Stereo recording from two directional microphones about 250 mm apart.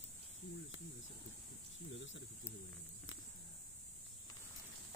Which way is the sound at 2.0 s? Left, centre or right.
Left.